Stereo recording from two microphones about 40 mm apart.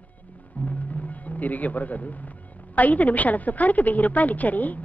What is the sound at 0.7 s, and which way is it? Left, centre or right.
A woman's voice, left.